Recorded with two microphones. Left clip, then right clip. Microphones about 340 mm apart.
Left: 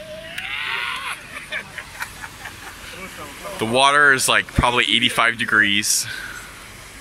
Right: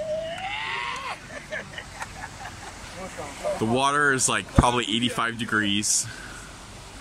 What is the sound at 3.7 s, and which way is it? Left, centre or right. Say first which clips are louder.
Speech: left 9 dB; centre.